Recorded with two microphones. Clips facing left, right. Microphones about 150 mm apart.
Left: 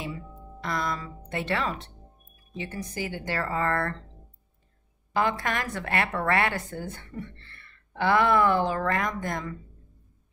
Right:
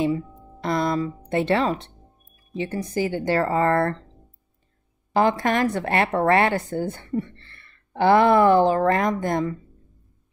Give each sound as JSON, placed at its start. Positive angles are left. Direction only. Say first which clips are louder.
{"t": 0.0, "sound": "a woman's voice", "louder": "right 13 dB", "side_deg": -30}
{"t": 5.1, "sound": "a woman's voice", "louder": "right 7 dB", "side_deg": -30}